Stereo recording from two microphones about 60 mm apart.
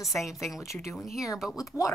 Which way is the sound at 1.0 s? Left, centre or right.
Centre.